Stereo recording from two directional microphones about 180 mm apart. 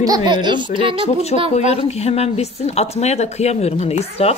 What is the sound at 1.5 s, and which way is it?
Speech, 35° left (ahead or behind).